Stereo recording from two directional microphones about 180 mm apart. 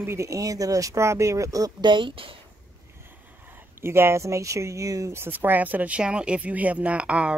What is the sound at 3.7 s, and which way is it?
Speech, 15° right (ahead or behind).